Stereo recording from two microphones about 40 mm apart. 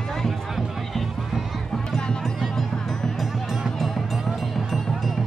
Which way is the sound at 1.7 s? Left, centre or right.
Centre.